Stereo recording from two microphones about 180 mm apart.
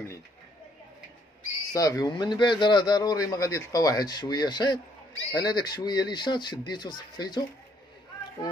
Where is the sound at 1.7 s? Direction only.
20° left (ahead or behind).